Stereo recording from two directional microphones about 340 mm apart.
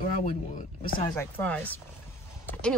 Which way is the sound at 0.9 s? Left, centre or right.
Centre.